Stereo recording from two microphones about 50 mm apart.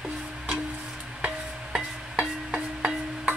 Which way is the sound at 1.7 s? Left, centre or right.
Centre.